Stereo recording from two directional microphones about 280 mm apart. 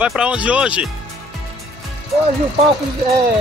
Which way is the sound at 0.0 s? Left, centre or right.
Centre.